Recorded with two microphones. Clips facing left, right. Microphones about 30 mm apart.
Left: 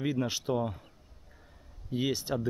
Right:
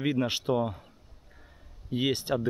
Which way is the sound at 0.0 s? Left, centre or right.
Right.